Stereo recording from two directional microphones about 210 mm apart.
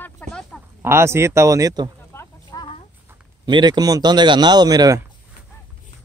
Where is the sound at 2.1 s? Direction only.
20° left (ahead or behind).